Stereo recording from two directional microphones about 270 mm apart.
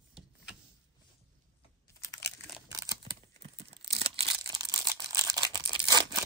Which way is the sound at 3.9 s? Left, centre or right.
Right.